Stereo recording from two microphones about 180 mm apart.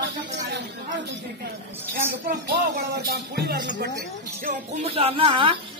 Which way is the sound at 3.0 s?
60° right (ahead or behind).